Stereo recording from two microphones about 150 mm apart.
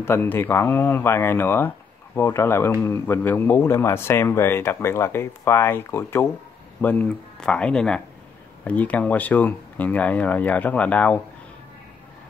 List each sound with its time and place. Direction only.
0.0 s speech: 15° left (ahead or behind)